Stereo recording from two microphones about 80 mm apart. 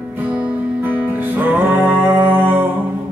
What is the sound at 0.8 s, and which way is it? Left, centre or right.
Music, right.